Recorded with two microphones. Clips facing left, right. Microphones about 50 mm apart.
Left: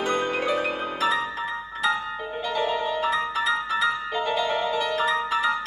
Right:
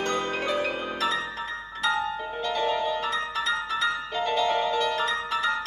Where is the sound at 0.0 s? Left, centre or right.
Centre.